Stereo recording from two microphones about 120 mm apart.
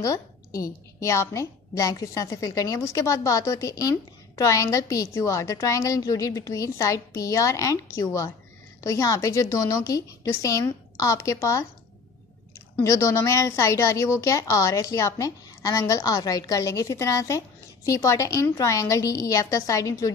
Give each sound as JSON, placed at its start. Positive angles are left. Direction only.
{"t": 0.0, "sound": "a woman's voice", "side_deg": 25}
{"t": 12.8, "sound": "a woman's voice", "side_deg": 25}